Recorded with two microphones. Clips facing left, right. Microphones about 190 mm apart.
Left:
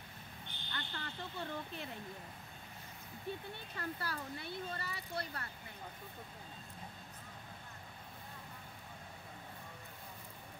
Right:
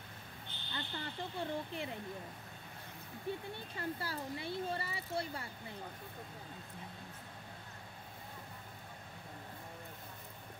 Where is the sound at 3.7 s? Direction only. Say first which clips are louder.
Right 2 dB; 25° right (ahead or behind).